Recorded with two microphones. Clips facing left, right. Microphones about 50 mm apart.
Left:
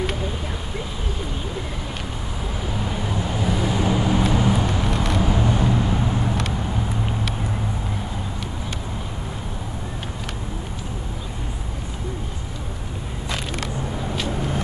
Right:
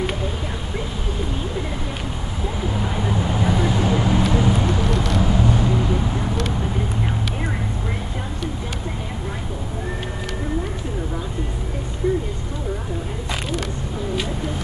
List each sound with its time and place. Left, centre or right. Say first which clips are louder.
2.7 s vehicle: right 2 dB; centre
4.8 s vehicle: right 1 dB; left
5.1 s vehicle: right 1 dB; centre